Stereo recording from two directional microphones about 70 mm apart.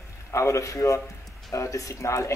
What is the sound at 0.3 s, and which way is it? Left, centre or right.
Speech, left.